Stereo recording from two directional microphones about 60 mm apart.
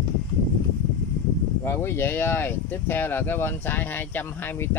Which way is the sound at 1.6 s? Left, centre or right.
Left.